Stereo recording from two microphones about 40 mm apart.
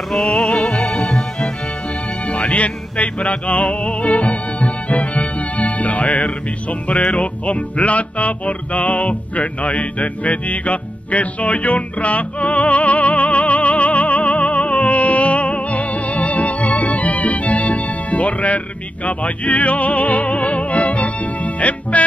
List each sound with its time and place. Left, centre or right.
0.1 s music: centre
2.2 s music: left